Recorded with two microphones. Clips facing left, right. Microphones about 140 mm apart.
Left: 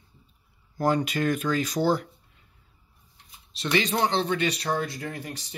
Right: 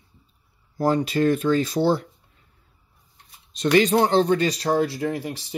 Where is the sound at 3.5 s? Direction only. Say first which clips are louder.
Right 8 dB; 45° right (ahead or behind).